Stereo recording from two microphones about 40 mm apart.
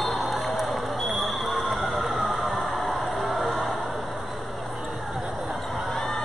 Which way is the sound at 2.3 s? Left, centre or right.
Centre.